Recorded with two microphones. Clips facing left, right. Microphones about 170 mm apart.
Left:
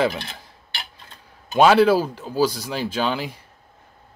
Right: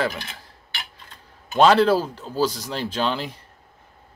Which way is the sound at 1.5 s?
5° left (ahead or behind).